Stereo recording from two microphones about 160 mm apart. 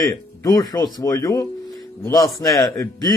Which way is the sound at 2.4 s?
20° left (ahead or behind).